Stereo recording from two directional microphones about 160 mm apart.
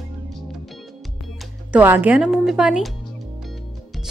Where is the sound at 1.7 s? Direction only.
10° right (ahead or behind).